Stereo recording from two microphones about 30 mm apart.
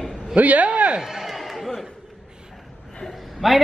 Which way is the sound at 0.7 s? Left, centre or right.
Right.